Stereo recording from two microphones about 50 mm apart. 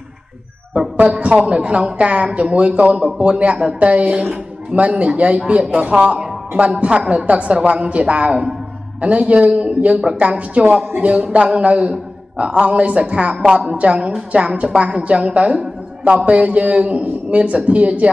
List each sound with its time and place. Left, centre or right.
1.2 s a woman's voice: right
9.2 s a woman's voice: right